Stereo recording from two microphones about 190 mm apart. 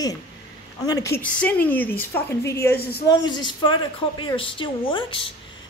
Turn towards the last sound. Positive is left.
turn(degrees=25)  # may be behind; listen again after turning